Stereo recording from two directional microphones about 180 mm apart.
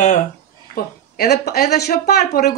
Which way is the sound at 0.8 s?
55° left (ahead or behind).